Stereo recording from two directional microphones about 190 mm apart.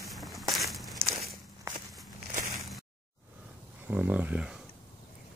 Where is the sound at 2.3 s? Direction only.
45° right (ahead or behind).